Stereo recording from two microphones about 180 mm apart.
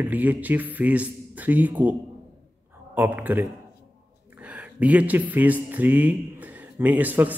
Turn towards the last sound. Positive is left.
turn(degrees=-10)  # may be behind; listen again after turning